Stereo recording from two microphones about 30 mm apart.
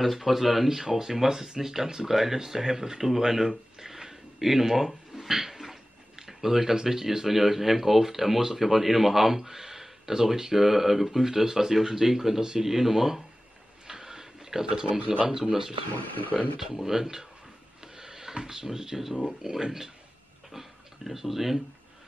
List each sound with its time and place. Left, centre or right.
0.0 s speech: centre
12.4 s speech: right
12.6 s speech: centre
13.8 s a sound: centre
15.2 s speech: centre
16.0 s speech: left
16.7 s speech: centre
17.9 s a sound: centre
18.4 s speech: centre